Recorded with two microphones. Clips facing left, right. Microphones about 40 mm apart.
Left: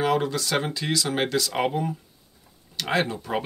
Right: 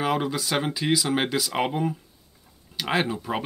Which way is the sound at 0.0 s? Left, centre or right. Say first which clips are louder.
Left 2 dB; centre.